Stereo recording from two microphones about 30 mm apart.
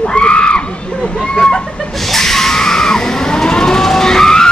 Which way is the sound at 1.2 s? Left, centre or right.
Centre.